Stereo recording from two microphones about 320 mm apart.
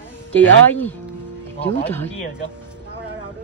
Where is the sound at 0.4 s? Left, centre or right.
Centre.